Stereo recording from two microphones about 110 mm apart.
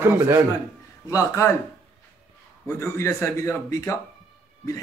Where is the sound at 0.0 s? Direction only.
25° right (ahead or behind).